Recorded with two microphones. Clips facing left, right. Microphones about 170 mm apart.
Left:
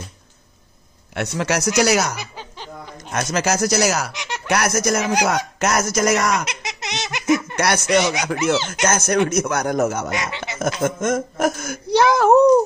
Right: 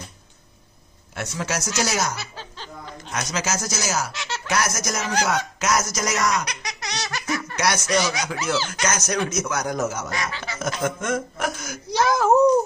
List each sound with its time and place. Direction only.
1.1 s a man's voice: 65° left (ahead or behind)
2.1 s snicker: 15° left (ahead or behind)
3.0 s speech: 50° left (ahead or behind)
4.1 s speech: 15° left (ahead or behind)
4.5 s speech: 60° left (ahead or behind)
6.4 s laughter: 25° left (ahead or behind)
7.5 s speech: 60° left (ahead or behind)
8.5 s speech: 20° left (ahead or behind)
8.8 s speech: 55° left (ahead or behind)
10.1 s speech: 20° left (ahead or behind)
10.6 s speech: 45° left (ahead or behind); by 12.4 s 65° left (ahead or behind)